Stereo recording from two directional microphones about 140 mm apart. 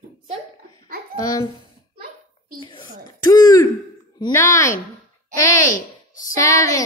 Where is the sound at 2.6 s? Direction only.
35° left (ahead or behind).